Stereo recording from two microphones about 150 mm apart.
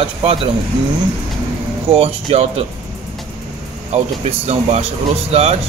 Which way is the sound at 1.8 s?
40° right (ahead or behind).